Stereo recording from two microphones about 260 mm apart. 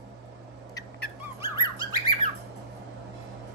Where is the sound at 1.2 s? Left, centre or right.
Centre.